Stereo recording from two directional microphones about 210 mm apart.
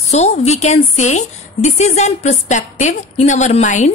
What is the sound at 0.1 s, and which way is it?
A woman's voice, 30° left (ahead or behind).